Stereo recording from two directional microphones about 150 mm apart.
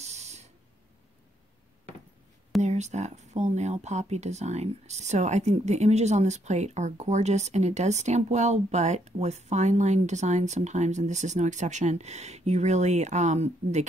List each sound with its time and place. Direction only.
0.0 s spray: 45° right (ahead or behind)
2.6 s speech: 50° right (ahead or behind)